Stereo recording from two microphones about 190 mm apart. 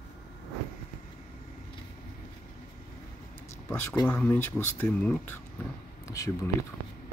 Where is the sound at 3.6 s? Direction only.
15° left (ahead or behind).